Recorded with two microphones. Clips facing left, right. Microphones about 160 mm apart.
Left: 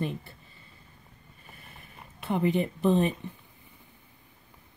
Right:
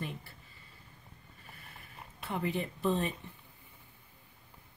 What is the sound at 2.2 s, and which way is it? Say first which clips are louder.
Speech: left 8 dB; 20° left (ahead or behind).